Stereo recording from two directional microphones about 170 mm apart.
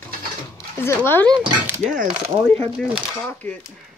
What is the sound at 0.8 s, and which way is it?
Speech, 15° left (ahead or behind).